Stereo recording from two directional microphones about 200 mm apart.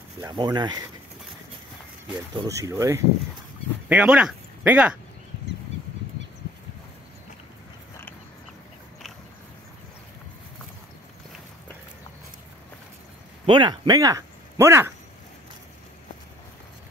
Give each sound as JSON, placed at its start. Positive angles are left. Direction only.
{"t": 0.2, "sound": "speech", "side_deg": -20}
{"t": 2.3, "sound": "speech", "side_deg": -15}
{"t": 3.9, "sound": "speech", "side_deg": -5}
{"t": 13.5, "sound": "speech", "side_deg": -20}